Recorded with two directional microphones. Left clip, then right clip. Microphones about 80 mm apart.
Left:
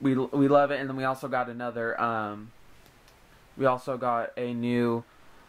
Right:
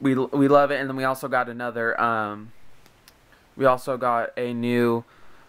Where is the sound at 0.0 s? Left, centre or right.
Right.